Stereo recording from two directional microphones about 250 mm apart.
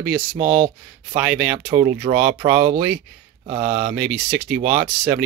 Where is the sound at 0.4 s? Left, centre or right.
Centre.